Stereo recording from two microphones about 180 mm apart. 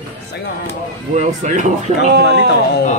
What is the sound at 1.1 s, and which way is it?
Speech, 40° right (ahead or behind).